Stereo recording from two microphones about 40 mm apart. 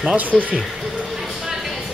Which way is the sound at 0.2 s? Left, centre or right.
Right.